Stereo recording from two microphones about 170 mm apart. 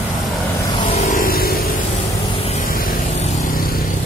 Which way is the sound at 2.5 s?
55° left (ahead or behind).